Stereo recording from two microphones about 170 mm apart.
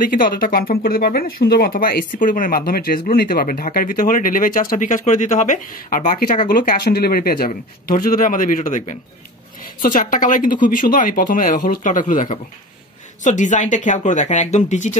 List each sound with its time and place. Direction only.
0.0 s speech: 55° left (ahead or behind)